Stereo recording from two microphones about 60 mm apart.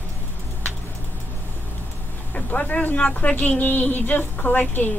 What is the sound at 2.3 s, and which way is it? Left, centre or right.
A woman's voice, left.